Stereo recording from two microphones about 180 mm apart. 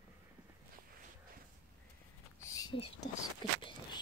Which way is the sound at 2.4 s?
20° left (ahead or behind).